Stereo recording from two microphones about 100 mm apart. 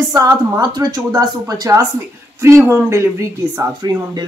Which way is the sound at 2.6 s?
25° right (ahead or behind).